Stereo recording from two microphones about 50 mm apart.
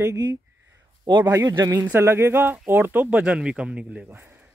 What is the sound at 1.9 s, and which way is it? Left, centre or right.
Speech, right.